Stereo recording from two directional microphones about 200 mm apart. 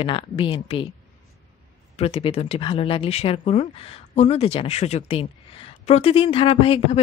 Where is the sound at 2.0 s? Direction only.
30° left (ahead or behind).